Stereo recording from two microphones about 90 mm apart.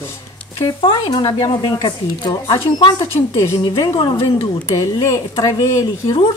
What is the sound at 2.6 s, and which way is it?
Speech, 90° left.